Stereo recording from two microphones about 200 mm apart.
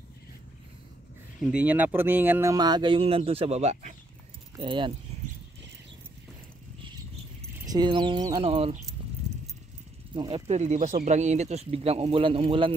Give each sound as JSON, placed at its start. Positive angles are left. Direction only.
{"t": 1.4, "sound": "speech", "side_deg": -5}
{"t": 7.5, "sound": "speech", "side_deg": -20}
{"t": 9.3, "sound": "keys jangling", "side_deg": -30}
{"t": 10.1, "sound": "speech", "side_deg": -25}